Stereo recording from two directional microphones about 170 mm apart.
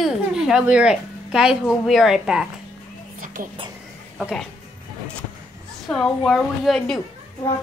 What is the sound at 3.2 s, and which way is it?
Music, 55° right (ahead or behind).